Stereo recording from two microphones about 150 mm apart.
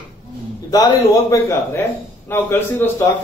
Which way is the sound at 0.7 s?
20° left (ahead or behind).